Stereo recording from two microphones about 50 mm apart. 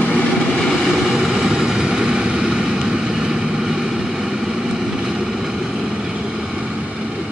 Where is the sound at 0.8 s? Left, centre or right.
Centre.